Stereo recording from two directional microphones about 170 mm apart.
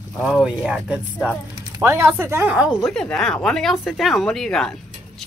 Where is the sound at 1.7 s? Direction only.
15° right (ahead or behind).